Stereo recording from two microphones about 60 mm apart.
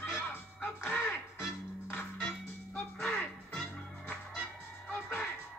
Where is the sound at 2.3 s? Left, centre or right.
Centre.